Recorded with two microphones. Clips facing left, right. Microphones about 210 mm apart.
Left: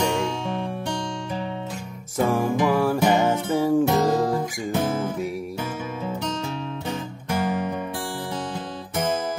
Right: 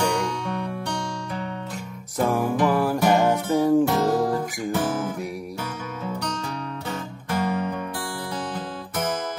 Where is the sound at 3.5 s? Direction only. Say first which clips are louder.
Right 1 dB; centre (ahead or behind).